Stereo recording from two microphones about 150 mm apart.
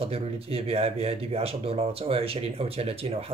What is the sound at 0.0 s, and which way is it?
Speech, 40° right (ahead or behind).